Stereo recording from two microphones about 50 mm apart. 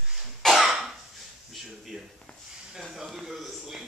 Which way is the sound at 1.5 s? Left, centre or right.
Centre.